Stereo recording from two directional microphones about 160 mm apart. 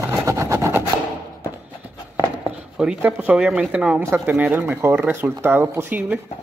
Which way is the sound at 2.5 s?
5° right (ahead or behind).